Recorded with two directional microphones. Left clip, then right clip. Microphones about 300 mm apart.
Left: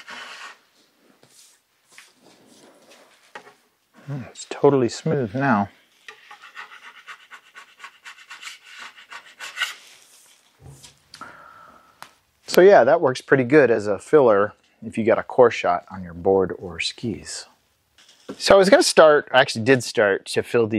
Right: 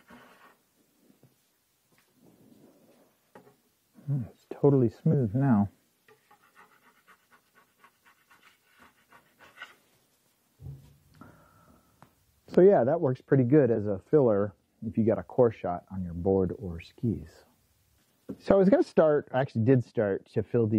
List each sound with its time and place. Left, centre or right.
0.0 s rub: centre
2.2 s a sound: centre
10.8 s speech: centre
17.2 s speech: centre